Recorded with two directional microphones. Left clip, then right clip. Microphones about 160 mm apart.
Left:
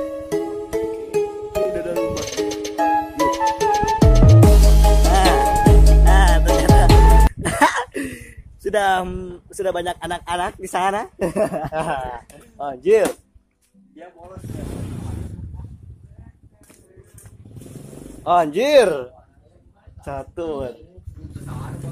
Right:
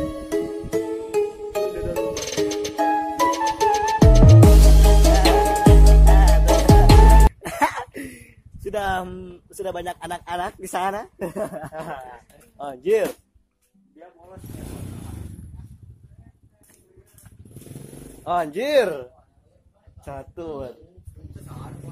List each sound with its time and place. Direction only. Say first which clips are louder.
1.1 s music: left 1 dB; centre (ahead or behind); by 11.0 s 15° right (ahead or behind)
11.3 s speech: left 9 dB; 5° left (ahead or behind)
11.7 s speech: left 10 dB; 40° left (ahead or behind)
12.5 s speech: left 5 dB; 5° right (ahead or behind)
18.2 s speech: left 7 dB; 5° left (ahead or behind)